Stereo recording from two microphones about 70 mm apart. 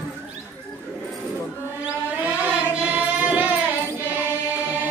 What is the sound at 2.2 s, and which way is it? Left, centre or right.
Singing, right.